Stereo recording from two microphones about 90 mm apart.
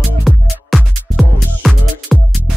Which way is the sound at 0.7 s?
Centre (ahead or behind).